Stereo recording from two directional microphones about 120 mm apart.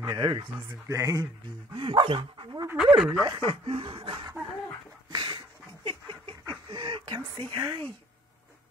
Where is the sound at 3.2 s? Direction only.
45° right (ahead or behind).